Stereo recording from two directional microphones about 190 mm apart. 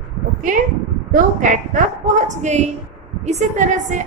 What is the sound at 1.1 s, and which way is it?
A woman's voice, 40° right (ahead or behind).